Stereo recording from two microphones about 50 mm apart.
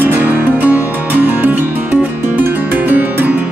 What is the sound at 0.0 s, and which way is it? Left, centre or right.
Music, right.